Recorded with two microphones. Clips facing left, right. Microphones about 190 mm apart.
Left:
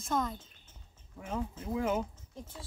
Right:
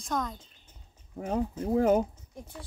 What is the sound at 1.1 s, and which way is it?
Speech, 40° right (ahead or behind).